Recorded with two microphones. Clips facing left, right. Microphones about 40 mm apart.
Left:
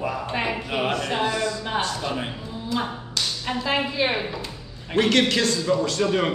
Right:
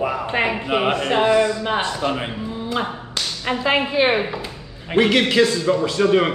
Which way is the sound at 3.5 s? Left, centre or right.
Right.